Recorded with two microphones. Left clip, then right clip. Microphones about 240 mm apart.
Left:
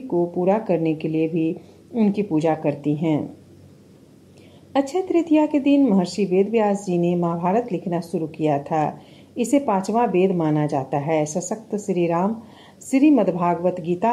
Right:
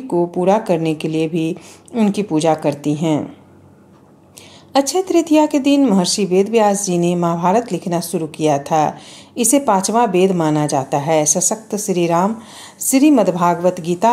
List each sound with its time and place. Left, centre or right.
0.5 s speech: right
4.7 s a woman's voice: centre